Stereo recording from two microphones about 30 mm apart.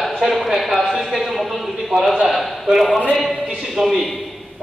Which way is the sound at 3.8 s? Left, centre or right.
Right.